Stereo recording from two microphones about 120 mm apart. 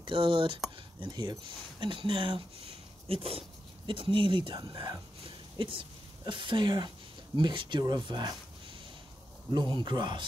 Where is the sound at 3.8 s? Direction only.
45° right (ahead or behind).